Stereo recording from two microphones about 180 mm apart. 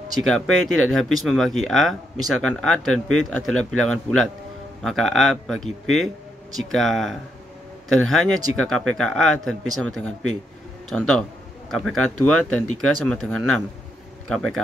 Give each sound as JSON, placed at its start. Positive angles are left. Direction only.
{"t": 0.3, "sound": "speech", "side_deg": 0}